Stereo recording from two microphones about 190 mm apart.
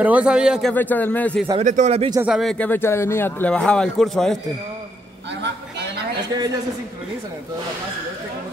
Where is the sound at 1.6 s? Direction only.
40° right (ahead or behind).